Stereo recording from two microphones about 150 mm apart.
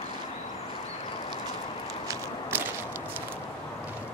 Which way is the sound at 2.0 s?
20° right (ahead or behind).